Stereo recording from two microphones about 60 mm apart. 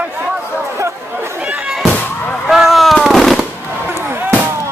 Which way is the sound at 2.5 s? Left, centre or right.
Centre.